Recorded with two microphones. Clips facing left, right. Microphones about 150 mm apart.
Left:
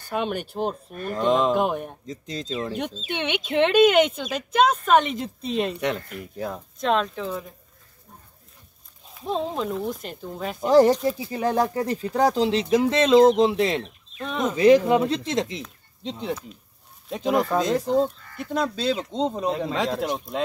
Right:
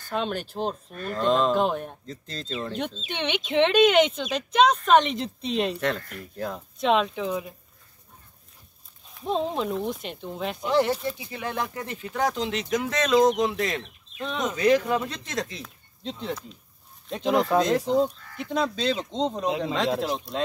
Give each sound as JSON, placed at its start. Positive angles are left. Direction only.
{"t": 0.1, "sound": "speech", "side_deg": 10}
{"t": 5.8, "sound": "speech", "side_deg": 15}
{"t": 6.8, "sound": "speech", "side_deg": -5}
{"t": 7.2, "sound": "speech", "side_deg": -15}
{"t": 9.1, "sound": "speech", "side_deg": 0}
{"t": 10.6, "sound": "speech", "side_deg": 40}
{"t": 14.2, "sound": "speech", "side_deg": 5}
{"t": 14.5, "sound": "speech", "side_deg": 25}
{"t": 17.1, "sound": "speech", "side_deg": 5}